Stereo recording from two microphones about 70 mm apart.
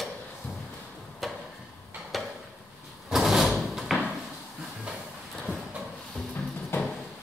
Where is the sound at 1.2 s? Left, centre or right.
Centre.